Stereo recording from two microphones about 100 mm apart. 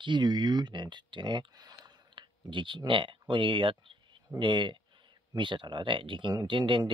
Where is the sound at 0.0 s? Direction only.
50° right (ahead or behind).